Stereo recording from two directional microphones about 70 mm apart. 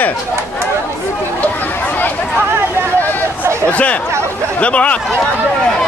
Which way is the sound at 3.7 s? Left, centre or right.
Centre.